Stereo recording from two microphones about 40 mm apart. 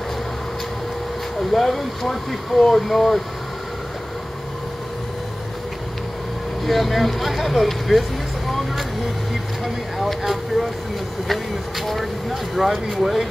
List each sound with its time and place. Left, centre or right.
1.5 s speech: centre
6.6 s speech: centre
8.5 s a sound: centre
9.9 s speech: centre
11.8 s speech: centre